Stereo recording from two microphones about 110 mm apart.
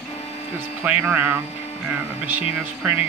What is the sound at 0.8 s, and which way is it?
Speech, 15° right (ahead or behind).